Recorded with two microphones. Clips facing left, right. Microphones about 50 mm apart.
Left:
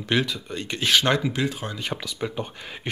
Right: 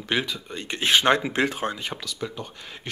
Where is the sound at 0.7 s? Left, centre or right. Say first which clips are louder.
Right 1 dB; right.